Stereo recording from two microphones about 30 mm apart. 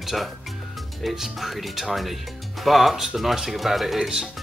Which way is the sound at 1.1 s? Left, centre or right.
Centre.